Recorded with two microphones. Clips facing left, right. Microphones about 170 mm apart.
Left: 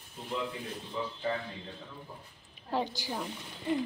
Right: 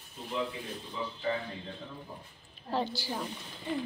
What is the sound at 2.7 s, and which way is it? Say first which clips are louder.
Speech: even; 15° left (ahead or behind).